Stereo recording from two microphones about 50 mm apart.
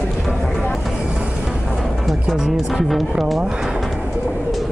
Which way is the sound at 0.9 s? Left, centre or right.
Right.